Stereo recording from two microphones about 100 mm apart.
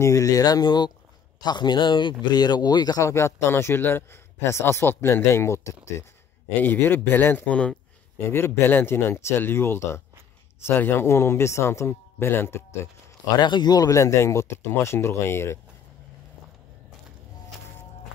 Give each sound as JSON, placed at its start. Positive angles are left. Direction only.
{"t": 0.0, "sound": "a man's voice", "side_deg": 35}
{"t": 6.6, "sound": "a man's voice", "side_deg": 20}
{"t": 8.2, "sound": "a man's voice", "side_deg": 25}
{"t": 13.4, "sound": "a man's voice", "side_deg": 45}